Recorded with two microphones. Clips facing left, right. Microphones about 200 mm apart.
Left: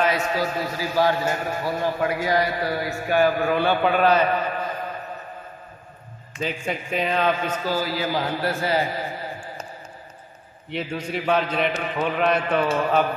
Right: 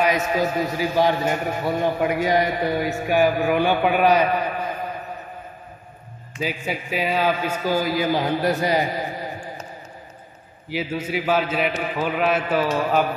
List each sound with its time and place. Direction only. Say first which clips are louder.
0.0 s a man's voice: right 2 dB; 15° right (ahead or behind)
6.4 s a man's voice: right 1 dB; 5° right (ahead or behind)
10.7 s a man's voice: right 2 dB; 5° right (ahead or behind)